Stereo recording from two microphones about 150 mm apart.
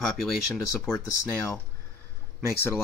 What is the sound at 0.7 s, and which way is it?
Speech, 15° left (ahead or behind).